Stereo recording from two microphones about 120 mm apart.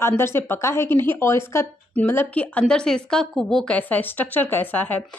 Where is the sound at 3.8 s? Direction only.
15° left (ahead or behind).